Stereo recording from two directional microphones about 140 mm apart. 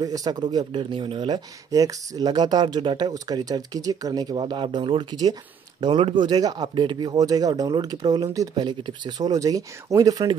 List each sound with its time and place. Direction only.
0.0 s speech: 25° right (ahead or behind)